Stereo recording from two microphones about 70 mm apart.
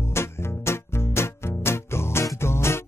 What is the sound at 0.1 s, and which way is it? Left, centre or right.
Music, left.